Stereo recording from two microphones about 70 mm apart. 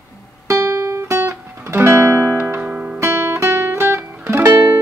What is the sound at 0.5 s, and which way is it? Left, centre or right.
Music, right.